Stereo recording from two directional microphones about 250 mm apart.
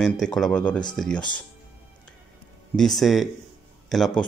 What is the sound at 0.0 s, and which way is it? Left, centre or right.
Speech, centre.